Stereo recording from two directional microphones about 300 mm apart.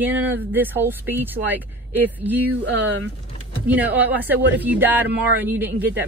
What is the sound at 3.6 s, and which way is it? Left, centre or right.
Speech, centre.